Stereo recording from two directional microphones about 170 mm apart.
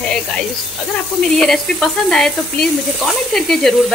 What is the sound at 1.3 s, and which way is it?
Speech, centre (ahead or behind).